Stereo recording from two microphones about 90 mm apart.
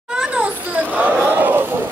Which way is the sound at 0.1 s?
15° right (ahead or behind).